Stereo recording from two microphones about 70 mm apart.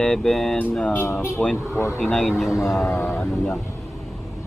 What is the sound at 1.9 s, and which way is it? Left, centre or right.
Speech, centre.